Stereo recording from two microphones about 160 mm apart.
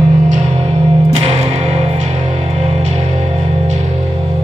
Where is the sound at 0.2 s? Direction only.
45° right (ahead or behind).